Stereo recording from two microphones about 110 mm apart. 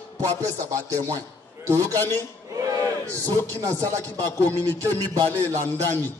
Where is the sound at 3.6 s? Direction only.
30° right (ahead or behind).